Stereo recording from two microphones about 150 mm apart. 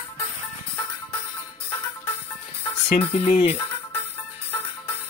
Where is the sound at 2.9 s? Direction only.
35° left (ahead or behind).